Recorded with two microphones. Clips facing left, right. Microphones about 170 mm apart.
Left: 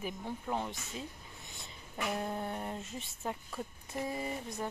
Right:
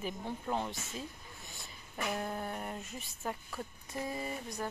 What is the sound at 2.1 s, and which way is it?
Speech, 20° left (ahead or behind).